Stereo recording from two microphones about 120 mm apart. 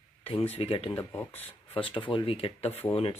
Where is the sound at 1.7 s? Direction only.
45° left (ahead or behind).